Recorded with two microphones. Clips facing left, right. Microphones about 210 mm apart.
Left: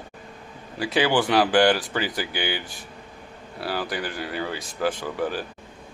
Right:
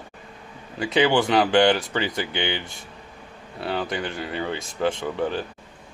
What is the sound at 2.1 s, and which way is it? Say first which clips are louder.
Speech: right 1 dB; 20° right (ahead or behind).